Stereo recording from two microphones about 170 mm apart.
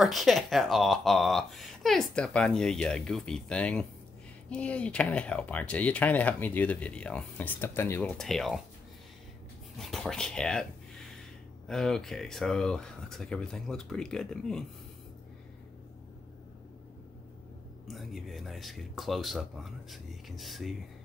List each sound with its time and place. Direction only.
0.0 s speech: centre (ahead or behind)
8.2 s speech: centre (ahead or behind)
9.8 s speech: centre (ahead or behind)
17.8 s speech: centre (ahead or behind)